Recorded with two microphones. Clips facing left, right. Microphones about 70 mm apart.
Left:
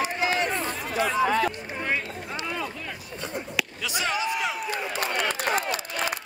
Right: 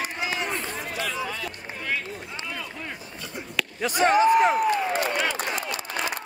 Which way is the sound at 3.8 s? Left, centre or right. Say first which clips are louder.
Right 11 dB; right.